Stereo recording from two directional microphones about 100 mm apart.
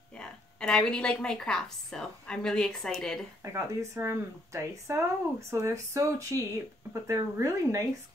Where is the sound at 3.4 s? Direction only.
30° right (ahead or behind).